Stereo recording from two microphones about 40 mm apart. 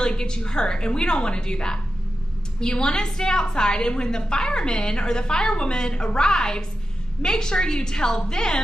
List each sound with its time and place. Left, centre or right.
0.0 s a woman's voice: centre